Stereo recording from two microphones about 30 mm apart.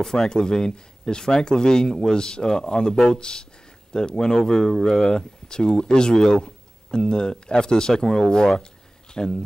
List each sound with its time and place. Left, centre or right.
0.3 s speech: left